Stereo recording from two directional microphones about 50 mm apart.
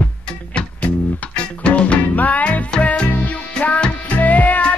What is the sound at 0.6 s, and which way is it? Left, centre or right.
Music, left.